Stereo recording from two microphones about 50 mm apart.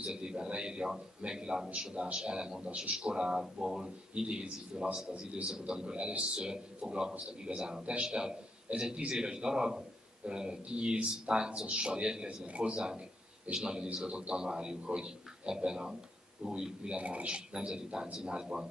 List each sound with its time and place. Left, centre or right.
0.0 s a man's voice: centre